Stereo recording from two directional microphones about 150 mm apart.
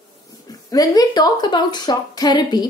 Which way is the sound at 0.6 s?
25° left (ahead or behind).